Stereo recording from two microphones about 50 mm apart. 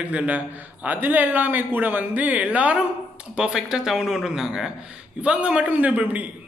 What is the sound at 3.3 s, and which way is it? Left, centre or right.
Speech, centre.